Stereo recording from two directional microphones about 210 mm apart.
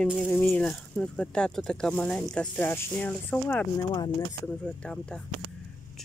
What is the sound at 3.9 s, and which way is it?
Speech, 20° left (ahead or behind).